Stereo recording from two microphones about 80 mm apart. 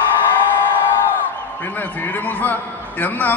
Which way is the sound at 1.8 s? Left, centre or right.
Left.